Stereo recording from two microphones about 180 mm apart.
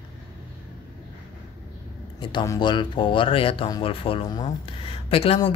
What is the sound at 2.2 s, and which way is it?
Speech, 25° left (ahead or behind).